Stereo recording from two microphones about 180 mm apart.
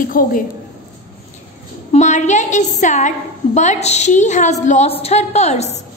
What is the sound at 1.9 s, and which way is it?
A woman's voice, 40° left (ahead or behind).